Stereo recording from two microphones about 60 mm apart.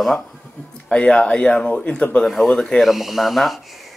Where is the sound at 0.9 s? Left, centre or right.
Centre.